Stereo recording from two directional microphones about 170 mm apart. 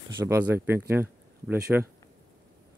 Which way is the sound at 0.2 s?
15° right (ahead or behind).